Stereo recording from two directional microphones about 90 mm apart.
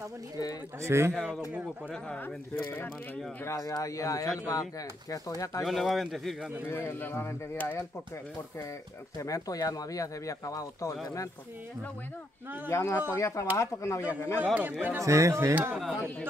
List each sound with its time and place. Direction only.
0.8 s speech: 30° right (ahead or behind)
1.1 s speech: 5° left (ahead or behind)
2.5 s speech: 25° left (ahead or behind)
3.4 s speech: 35° left (ahead or behind)
5.6 s speech: centre (ahead or behind)
6.6 s speech: 25° left (ahead or behind)
9.2 s speech: 40° left (ahead or behind)
12.6 s speech: 35° left (ahead or behind)
14.4 s speech: 20° right (ahead or behind)
15.0 s speech: 35° right (ahead or behind)
15.5 s speech: 15° right (ahead or behind)